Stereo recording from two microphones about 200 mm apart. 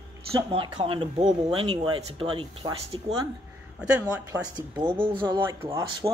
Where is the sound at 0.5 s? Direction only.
30° right (ahead or behind).